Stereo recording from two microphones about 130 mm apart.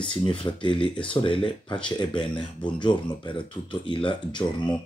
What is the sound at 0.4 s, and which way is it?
Speech, 40° left (ahead or behind).